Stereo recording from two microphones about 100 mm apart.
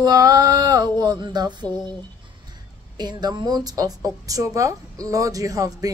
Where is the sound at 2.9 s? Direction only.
45° right (ahead or behind).